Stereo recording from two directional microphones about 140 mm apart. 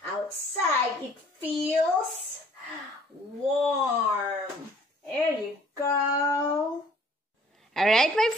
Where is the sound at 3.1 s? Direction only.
10° right (ahead or behind).